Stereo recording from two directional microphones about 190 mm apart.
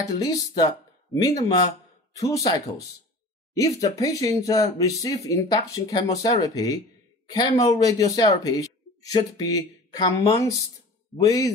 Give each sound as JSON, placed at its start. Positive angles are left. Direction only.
{"t": 0.0, "sound": "speech", "side_deg": 20}